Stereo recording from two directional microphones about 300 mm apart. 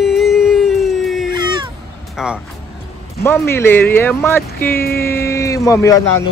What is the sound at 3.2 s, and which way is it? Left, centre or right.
Speech, centre.